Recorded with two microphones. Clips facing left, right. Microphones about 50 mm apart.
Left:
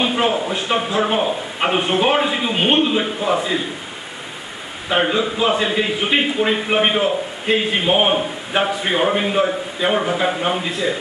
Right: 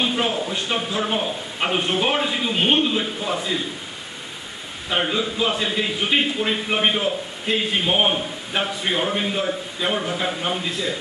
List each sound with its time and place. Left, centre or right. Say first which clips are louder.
0.0 s a man's voice: left 4 dB; centre
4.8 s a man's voice: left 5 dB; centre